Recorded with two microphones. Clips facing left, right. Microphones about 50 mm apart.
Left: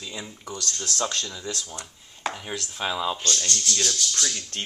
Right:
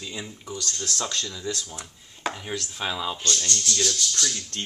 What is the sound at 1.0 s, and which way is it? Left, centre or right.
Speech, left.